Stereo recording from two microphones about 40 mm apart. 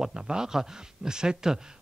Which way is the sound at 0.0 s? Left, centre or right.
Centre.